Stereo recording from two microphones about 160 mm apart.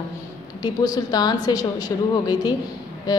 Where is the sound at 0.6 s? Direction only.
25° left (ahead or behind).